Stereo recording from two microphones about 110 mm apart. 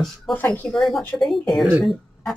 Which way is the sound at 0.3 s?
15° left (ahead or behind).